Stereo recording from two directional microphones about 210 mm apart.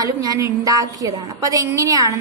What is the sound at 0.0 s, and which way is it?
A woman's voice, 15° right (ahead or behind).